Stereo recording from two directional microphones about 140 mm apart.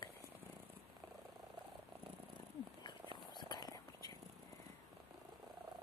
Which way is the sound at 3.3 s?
30° left (ahead or behind).